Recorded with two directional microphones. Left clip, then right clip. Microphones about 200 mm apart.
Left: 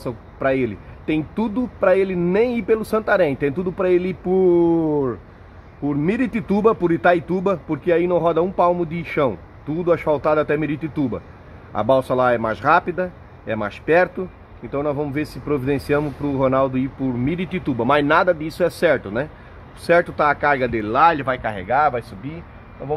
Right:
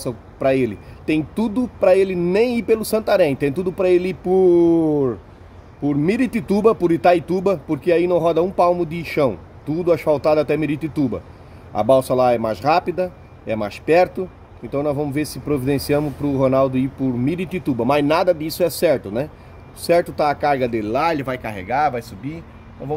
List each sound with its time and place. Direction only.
0.0 s speech: 15° right (ahead or behind)
5.9 s speech: 20° right (ahead or behind)